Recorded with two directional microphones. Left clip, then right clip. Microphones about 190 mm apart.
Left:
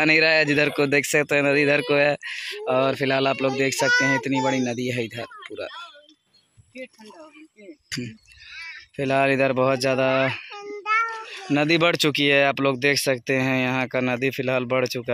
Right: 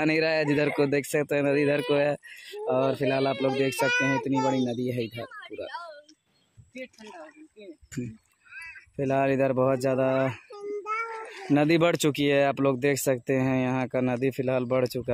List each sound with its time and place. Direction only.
0.0 s speech: centre (ahead or behind)
3.8 s speech: 20° left (ahead or behind)
4.2 s speech: centre (ahead or behind)
8.9 s speech: centre (ahead or behind)
10.8 s child singing: 25° left (ahead or behind)
11.5 s speech: 5° right (ahead or behind)